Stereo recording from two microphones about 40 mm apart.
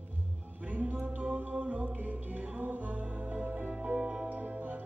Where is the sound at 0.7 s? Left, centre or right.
Right.